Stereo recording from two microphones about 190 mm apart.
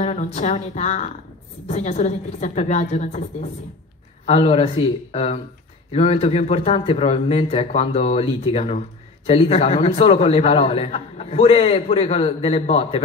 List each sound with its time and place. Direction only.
0.0 s a woman's voice: 35° left (ahead or behind)